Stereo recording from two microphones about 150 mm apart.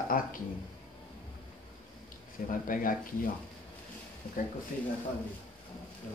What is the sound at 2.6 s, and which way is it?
Speech, 65° left (ahead or behind).